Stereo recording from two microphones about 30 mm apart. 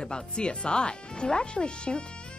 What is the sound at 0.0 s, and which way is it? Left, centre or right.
A woman's voice, left.